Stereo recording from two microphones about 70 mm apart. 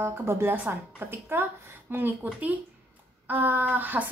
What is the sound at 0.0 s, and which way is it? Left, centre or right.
A woman's voice, right.